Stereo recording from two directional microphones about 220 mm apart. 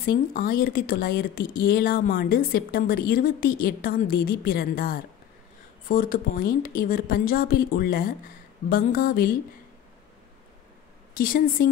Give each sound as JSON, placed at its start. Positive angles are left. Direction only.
{"t": 0.0, "sound": "speech", "side_deg": 40}
{"t": 11.1, "sound": "speech", "side_deg": 40}